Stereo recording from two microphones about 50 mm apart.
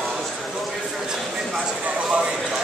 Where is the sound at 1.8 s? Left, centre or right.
Right.